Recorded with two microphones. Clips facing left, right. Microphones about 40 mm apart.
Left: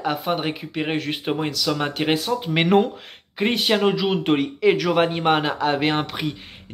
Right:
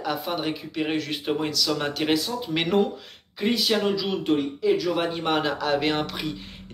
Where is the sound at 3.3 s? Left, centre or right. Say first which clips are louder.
Left 3 dB; left.